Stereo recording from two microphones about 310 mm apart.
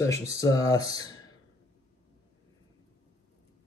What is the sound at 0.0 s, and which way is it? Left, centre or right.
Speech, centre.